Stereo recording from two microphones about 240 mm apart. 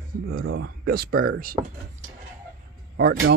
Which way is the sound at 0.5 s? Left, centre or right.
Right.